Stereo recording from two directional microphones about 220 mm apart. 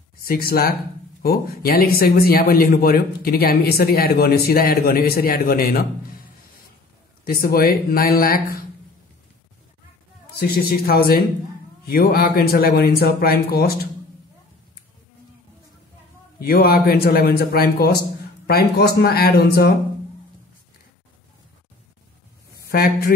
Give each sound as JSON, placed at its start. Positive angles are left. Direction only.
{"t": 0.2, "sound": "speech", "side_deg": 40}
{"t": 7.2, "sound": "speech", "side_deg": 40}
{"t": 10.4, "sound": "speech", "side_deg": 45}
{"t": 16.3, "sound": "speech", "side_deg": 45}
{"t": 22.6, "sound": "speech", "side_deg": 45}